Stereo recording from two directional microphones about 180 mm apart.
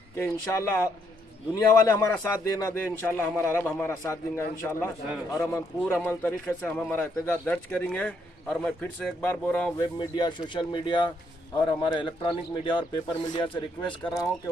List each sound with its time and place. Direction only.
0.2 s speech: 15° left (ahead or behind)
9.8 s speech: 25° left (ahead or behind)